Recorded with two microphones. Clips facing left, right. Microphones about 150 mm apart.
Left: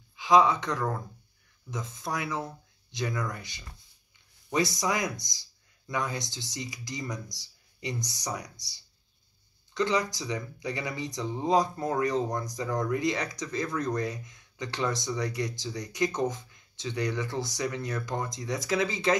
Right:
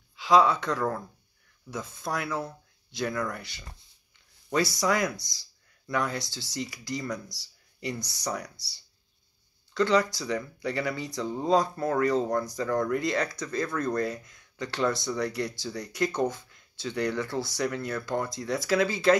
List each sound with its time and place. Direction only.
0.1 s speech: 15° left (ahead or behind)
9.8 s speech: 15° left (ahead or behind)